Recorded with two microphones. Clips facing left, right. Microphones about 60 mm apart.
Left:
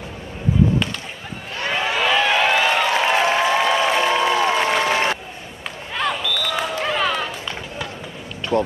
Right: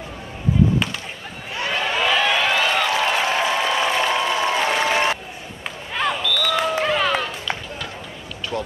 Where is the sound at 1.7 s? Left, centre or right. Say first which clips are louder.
Left 1 dB; centre.